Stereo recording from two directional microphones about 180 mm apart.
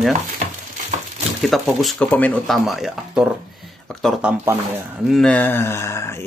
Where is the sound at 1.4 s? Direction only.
Centre (ahead or behind).